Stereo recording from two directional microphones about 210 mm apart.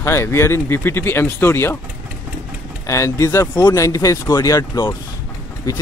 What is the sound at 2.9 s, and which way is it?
Speech, 15° left (ahead or behind).